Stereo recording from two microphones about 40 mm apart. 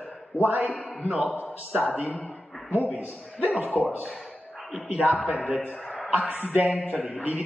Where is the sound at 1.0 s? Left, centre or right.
Right.